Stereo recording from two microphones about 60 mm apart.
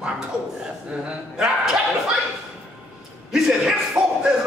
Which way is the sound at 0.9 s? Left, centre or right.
Centre.